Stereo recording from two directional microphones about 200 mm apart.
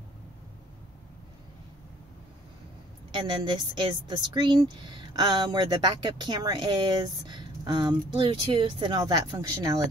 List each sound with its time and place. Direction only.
3.2 s speech: 25° right (ahead or behind)